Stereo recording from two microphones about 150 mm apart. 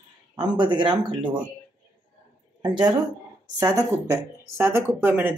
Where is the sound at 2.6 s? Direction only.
30° right (ahead or behind).